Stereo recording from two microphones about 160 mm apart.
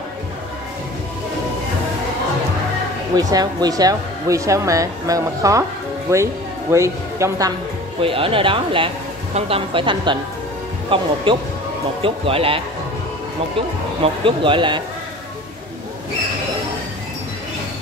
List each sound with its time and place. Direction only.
3.2 s a woman's voice: 25° right (ahead or behind)
8.0 s speech: 35° right (ahead or behind)
14.0 s speech: 35° right (ahead or behind)